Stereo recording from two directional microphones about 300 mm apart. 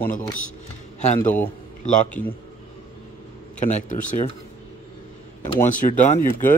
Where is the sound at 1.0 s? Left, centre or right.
Left.